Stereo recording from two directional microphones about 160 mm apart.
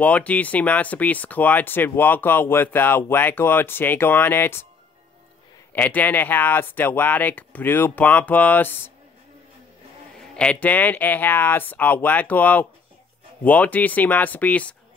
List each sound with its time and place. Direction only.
0.0 s speech: 10° left (ahead or behind)
5.7 s speech: 10° left (ahead or behind)
10.2 s speech: 5° left (ahead or behind)